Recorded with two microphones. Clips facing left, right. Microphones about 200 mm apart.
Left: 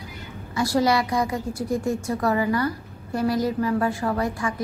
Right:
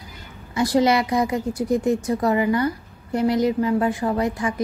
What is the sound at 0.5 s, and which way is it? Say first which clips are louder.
A woman's voice: right 3 dB; 20° right (ahead or behind).